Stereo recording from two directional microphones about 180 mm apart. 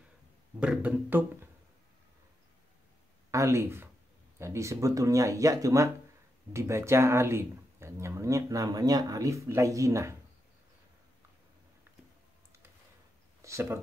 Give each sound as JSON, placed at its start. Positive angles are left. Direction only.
{"t": 0.6, "sound": "speech", "side_deg": -5}
{"t": 3.3, "sound": "speech", "side_deg": -15}
{"t": 13.4, "sound": "speech", "side_deg": -15}